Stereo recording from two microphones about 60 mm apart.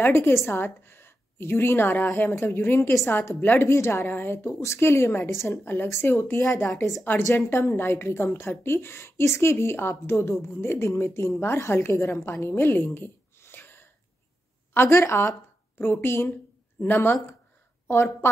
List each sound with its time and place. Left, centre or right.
0.0 s a woman's voice: left
3.6 s a woman's voice: left
4.0 s a woman's voice: left